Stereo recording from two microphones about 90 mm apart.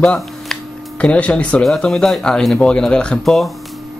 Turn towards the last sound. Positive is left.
turn(degrees=0)  # may be behind; listen again after turning